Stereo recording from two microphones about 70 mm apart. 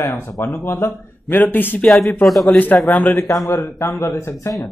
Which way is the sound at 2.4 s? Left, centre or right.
Left.